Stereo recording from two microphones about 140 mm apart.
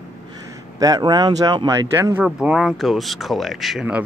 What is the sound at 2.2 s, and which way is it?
Speech, 5° right (ahead or behind).